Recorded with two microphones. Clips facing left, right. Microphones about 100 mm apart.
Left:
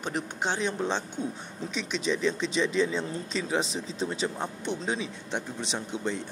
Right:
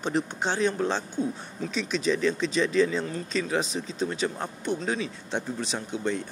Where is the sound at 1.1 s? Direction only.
20° left (ahead or behind).